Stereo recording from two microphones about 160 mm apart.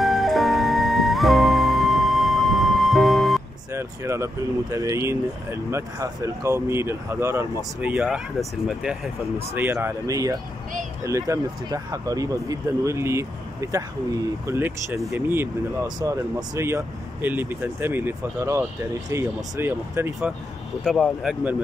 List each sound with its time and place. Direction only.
0.0 s music: centre (ahead or behind)
3.7 s speech: 15° right (ahead or behind)
7.9 s speech: 5° right (ahead or behind)
9.5 s speech: 15° right (ahead or behind)
20.8 s speech: centre (ahead or behind)